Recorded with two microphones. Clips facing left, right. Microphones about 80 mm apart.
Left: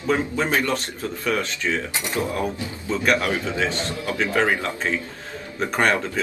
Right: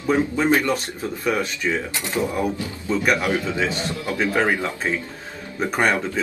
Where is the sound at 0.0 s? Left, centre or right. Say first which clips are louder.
Right 3 dB; centre.